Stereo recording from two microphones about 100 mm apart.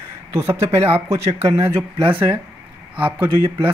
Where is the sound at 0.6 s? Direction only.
90° right.